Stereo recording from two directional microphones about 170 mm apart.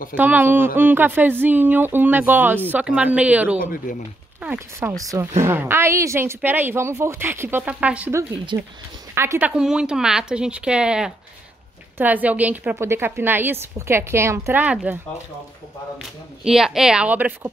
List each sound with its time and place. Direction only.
0.1 s speech: 10° right (ahead or behind)
3.5 s speech: 55° left (ahead or behind)
4.4 s speech: 10° right (ahead or behind)
8.5 s speech: 25° right (ahead or behind)
9.1 s a woman's voice: 15° right (ahead or behind)
16.0 s a woman's voice: 5° right (ahead or behind)